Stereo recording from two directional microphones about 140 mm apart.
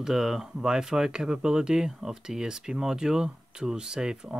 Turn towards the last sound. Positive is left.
turn(degrees=-5)  # may be behind; listen again after turning